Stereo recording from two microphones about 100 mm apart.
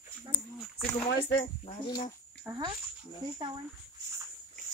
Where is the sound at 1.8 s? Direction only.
45° left (ahead or behind).